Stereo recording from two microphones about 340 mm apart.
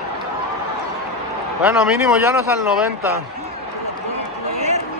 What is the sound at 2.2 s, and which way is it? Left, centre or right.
Speech, centre.